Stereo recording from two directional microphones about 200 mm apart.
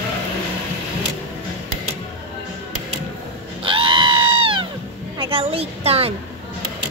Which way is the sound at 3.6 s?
25° right (ahead or behind).